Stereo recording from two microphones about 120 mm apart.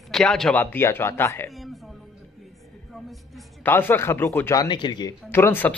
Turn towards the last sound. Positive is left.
turn(degrees=20)  # may be behind; listen again after turning